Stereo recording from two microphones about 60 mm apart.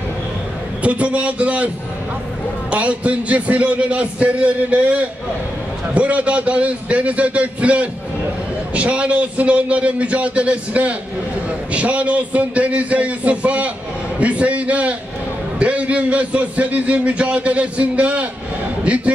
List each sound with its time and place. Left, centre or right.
0.8 s a man's voice: right
2.7 s a man's voice: right